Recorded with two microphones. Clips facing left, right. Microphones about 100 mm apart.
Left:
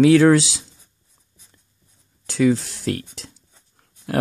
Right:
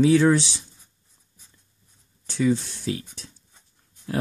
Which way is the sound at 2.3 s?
90° left.